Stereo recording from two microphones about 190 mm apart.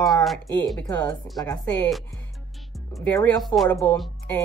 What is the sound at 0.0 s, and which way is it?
A woman's voice, centre (ahead or behind).